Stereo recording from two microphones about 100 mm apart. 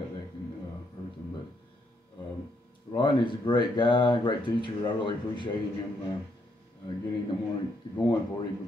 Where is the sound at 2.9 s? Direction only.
50° left (ahead or behind).